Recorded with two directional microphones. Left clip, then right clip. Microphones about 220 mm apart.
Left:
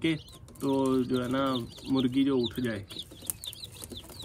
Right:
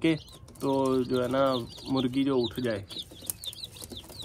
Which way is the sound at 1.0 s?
Centre (ahead or behind).